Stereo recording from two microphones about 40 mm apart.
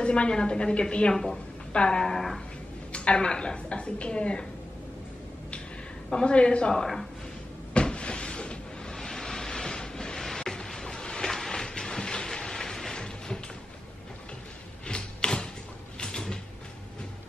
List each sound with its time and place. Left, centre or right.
0.0 s a woman's voice: left
1.1 s a woman's voice: centre
1.7 s a woman's voice: left
2.0 s a sound: centre
2.9 s a woman's voice: left
6.1 s a woman's voice: left
7.7 s cupboard open or close: left
8.9 s vehicle: centre
14.9 s a sound: left
16.0 s mechanisms: centre